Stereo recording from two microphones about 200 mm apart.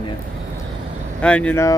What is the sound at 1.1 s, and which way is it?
Speech, 5° left (ahead or behind).